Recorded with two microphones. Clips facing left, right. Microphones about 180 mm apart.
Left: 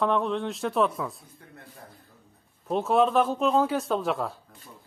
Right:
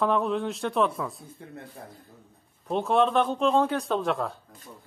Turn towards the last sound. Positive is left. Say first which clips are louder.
# even
turn(degrees=0)  # may be behind; listen again after turning